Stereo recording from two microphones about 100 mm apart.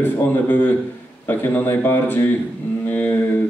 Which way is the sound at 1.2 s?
20° left (ahead or behind).